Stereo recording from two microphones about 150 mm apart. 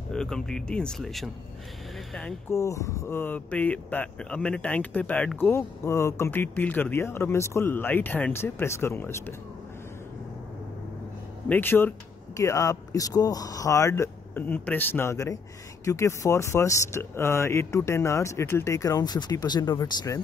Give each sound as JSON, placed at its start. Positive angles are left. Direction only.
{"t": 0.1, "sound": "speech", "side_deg": 5}
{"t": 2.5, "sound": "speech", "side_deg": 20}
{"t": 11.4, "sound": "speech", "side_deg": 15}